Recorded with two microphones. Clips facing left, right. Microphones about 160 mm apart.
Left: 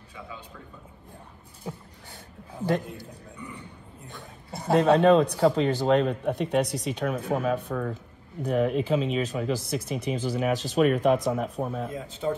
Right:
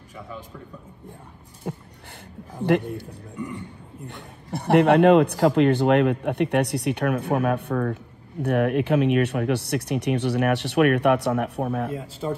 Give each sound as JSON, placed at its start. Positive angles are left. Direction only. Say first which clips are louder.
{"t": 1.6, "sound": "dog", "louder": "right 5 dB", "side_deg": -60}
{"t": 2.6, "sound": "a man's voice", "louder": "right 6 dB", "side_deg": -70}